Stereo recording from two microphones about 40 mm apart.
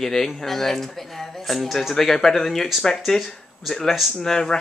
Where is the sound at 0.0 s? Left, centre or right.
Centre.